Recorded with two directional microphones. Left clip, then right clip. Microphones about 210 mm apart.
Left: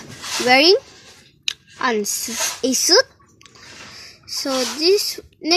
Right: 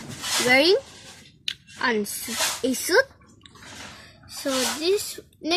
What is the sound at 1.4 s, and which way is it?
A woman's voice, 15° left (ahead or behind).